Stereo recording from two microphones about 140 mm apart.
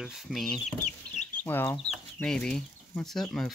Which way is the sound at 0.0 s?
Centre (ahead or behind).